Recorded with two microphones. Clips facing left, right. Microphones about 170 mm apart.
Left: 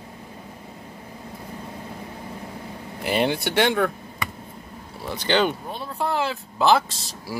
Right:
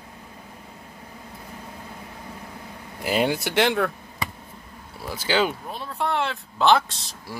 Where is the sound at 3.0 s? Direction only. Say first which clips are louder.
Even; 5° right (ahead or behind).